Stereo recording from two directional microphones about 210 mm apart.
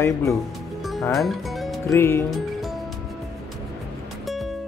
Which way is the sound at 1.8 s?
10° left (ahead or behind).